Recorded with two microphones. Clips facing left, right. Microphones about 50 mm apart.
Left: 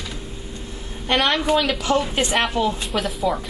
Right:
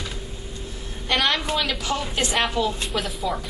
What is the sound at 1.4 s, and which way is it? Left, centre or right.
Speech, centre.